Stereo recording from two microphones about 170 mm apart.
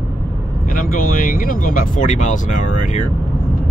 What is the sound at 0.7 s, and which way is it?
Speech, 55° left (ahead or behind).